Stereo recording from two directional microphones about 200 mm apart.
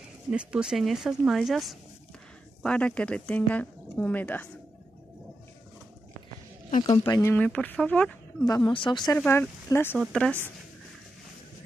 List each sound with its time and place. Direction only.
0.3 s speech: 5° right (ahead or behind)
6.8 s speech: 20° left (ahead or behind)
8.5 s speech: 20° left (ahead or behind)
9.2 s speech: 10° left (ahead or behind)